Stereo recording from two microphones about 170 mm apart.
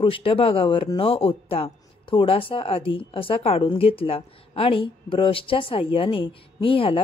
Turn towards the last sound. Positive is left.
turn(degrees=30)  # may be behind; listen again after turning